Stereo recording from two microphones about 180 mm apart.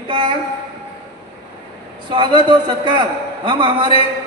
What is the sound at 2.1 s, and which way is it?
A man's voice, 25° right (ahead or behind).